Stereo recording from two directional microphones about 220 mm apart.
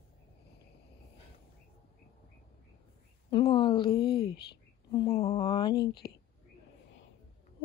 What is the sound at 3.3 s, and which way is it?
A woman's voice, 20° left (ahead or behind).